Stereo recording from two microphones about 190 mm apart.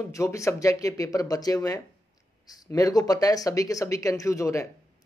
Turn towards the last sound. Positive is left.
turn(degrees=15)  # may be behind; listen again after turning